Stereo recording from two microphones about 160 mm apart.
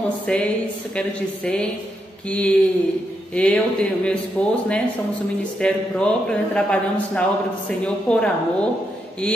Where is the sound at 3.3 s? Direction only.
5° left (ahead or behind).